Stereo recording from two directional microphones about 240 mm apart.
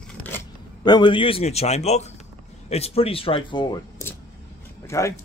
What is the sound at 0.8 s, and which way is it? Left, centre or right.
A man's voice, centre.